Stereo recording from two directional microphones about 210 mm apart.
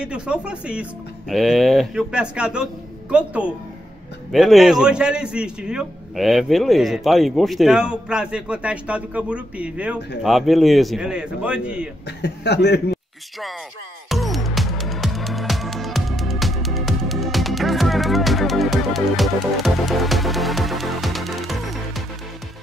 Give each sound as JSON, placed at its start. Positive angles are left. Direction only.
{"t": 0.0, "sound": "a man's voice", "side_deg": -5}
{"t": 12.2, "sound": "speech", "side_deg": 55}
{"t": 14.0, "sound": "music", "side_deg": 0}